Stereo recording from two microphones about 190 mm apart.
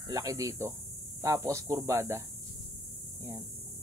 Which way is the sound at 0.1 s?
20° right (ahead or behind).